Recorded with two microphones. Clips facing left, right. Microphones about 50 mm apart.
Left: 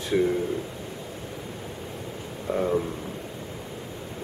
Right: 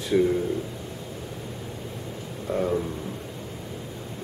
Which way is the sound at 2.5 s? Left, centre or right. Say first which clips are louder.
Even; centre.